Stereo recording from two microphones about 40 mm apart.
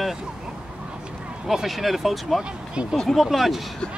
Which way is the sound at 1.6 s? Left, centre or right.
Centre.